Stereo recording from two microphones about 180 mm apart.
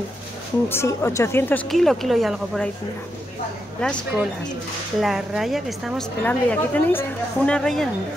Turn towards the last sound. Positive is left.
turn(degrees=5)  # may be behind; listen again after turning